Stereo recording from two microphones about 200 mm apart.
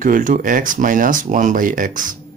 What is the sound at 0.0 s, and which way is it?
Speech, 40° right (ahead or behind).